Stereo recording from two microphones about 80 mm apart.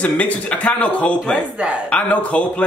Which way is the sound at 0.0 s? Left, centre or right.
Centre.